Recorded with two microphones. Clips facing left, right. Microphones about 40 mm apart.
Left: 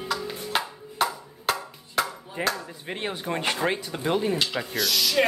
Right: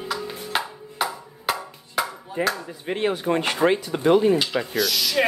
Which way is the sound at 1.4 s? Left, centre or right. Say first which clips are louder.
Right 1 dB; centre.